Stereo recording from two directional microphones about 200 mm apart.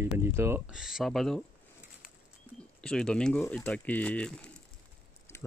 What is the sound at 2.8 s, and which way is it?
Speech, 5° left (ahead or behind).